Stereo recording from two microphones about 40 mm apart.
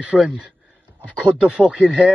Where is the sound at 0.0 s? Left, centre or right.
Right.